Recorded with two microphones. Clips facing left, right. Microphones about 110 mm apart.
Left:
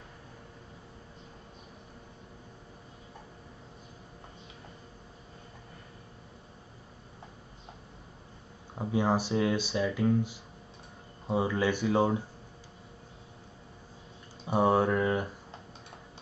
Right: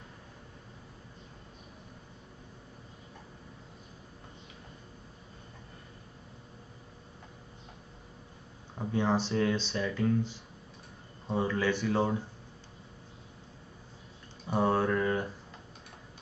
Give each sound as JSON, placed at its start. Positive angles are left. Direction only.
{"t": 8.7, "sound": "speech", "side_deg": 10}
{"t": 14.5, "sound": "mantra", "side_deg": 15}